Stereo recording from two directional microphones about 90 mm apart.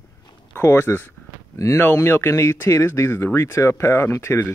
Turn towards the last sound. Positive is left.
turn(degrees=30)  # may be behind; listen again after turning